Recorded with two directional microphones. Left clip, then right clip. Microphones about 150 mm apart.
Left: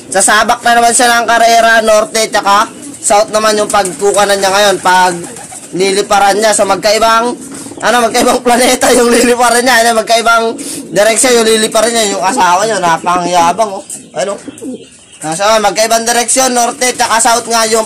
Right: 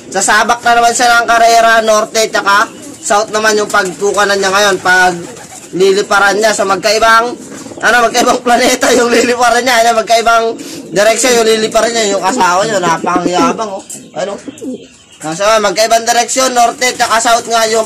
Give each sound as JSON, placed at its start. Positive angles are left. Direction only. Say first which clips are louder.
{"t": 0.1, "sound": "a man's voice", "louder": "left 1 dB", "side_deg": 45}
{"t": 15.3, "sound": "a man's voice", "louder": "left 1 dB", "side_deg": 30}